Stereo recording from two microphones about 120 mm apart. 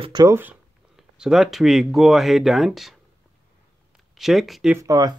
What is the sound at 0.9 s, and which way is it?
Speech, 5° right (ahead or behind).